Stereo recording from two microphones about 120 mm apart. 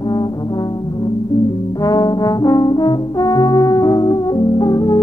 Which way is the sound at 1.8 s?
35° left (ahead or behind).